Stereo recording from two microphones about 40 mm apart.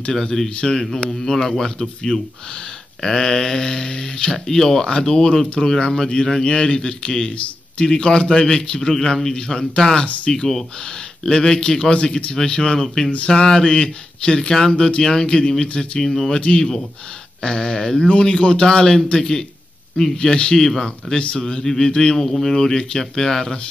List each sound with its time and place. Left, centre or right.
0.1 s speech: centre
16.0 s speech: centre
16.3 s speech: left; by 20.9 s centre
21.1 s speech: left
21.4 s speech: centre